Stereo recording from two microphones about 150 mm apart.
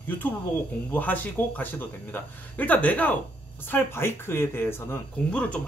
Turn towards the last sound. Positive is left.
turn(degrees=10)  # may be behind; listen again after turning